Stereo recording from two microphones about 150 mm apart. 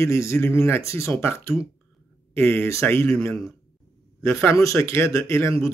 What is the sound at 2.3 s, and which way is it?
Speech, 15° left (ahead or behind).